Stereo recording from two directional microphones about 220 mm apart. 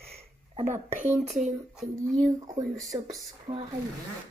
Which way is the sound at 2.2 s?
15° right (ahead or behind).